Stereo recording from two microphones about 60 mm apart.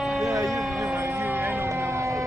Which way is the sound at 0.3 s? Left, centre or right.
Right.